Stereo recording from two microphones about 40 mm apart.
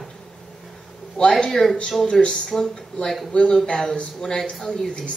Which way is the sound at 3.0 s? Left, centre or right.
Centre.